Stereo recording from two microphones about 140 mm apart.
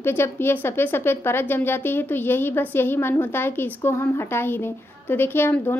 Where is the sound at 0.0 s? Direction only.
15° left (ahead or behind).